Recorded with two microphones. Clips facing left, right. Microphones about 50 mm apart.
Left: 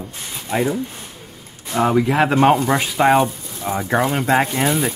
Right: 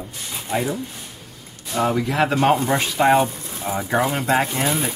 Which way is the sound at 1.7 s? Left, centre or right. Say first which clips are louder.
Left 4 dB; left.